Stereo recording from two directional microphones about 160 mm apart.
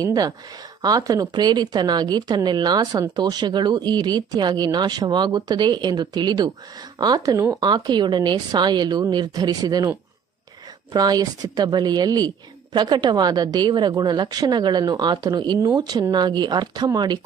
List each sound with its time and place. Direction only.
0.0 s speech: 25° right (ahead or behind)